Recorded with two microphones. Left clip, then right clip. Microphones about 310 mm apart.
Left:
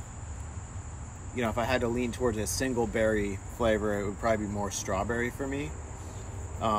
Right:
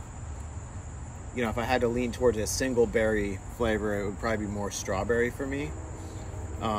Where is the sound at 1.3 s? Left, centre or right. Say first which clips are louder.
Right 1 dB; centre.